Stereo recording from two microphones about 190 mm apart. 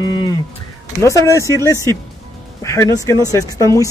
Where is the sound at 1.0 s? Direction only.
15° left (ahead or behind).